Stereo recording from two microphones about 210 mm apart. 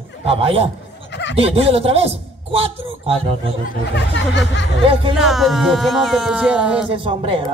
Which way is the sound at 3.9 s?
55° left (ahead or behind).